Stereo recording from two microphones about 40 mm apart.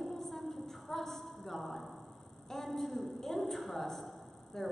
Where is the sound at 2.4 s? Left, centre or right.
Centre.